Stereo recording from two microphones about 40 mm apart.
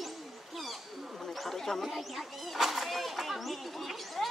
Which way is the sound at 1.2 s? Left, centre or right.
Centre.